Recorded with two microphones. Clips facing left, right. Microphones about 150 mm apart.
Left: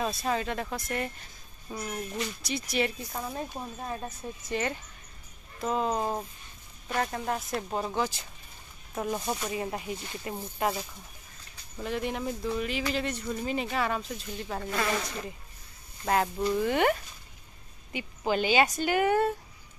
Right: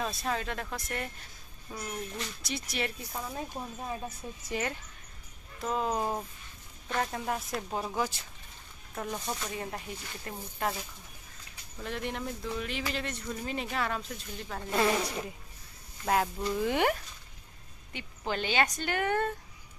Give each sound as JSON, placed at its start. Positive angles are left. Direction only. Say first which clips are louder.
{"t": 0.0, "sound": "speech", "louder": "left 3 dB", "side_deg": 0}
{"t": 8.9, "sound": "speech", "louder": "left 5 dB", "side_deg": 15}
{"t": 11.8, "sound": "speech", "louder": "left 4 dB", "side_deg": 5}
{"t": 14.7, "sound": "speech", "louder": "right 4 dB", "side_deg": -20}
{"t": 17.9, "sound": "speech", "louder": "left 6 dB", "side_deg": 10}